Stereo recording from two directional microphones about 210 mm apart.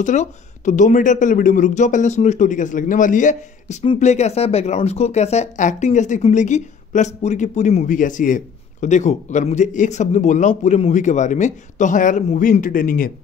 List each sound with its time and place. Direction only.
0.0 s speech: 35° left (ahead or behind)